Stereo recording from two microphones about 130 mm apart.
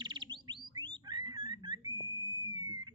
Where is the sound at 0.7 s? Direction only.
35° right (ahead or behind).